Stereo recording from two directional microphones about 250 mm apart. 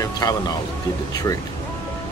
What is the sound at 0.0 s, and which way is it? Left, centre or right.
Speech, centre.